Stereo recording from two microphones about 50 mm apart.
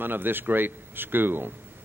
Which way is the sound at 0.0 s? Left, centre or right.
Right.